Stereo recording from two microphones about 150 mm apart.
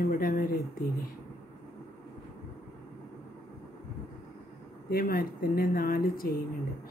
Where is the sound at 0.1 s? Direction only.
70° left (ahead or behind).